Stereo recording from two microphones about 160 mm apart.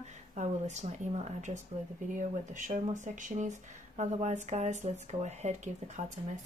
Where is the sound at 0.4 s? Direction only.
45° right (ahead or behind).